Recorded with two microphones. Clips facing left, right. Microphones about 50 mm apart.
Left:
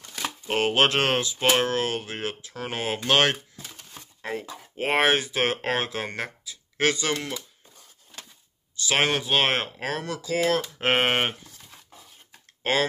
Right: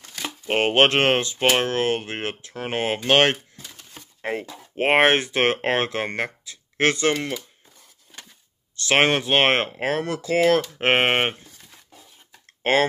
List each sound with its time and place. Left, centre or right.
0.5 s speech: right
8.7 s speech: right